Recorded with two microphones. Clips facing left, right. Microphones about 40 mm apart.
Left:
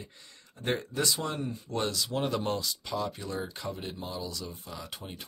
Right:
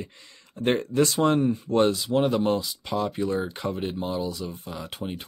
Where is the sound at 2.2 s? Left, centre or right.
Centre.